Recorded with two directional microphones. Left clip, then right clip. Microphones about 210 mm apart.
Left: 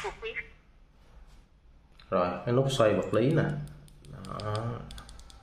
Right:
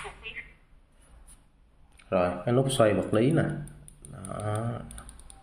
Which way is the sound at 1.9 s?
15° right (ahead or behind).